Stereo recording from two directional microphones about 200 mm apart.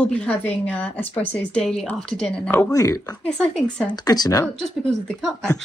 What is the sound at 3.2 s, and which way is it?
Speech, 5° left (ahead or behind).